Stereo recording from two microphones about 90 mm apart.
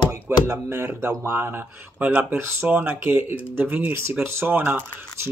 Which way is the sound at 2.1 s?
15° right (ahead or behind).